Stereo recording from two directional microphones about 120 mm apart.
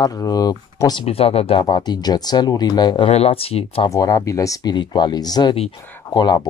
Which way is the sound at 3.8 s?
30° left (ahead or behind).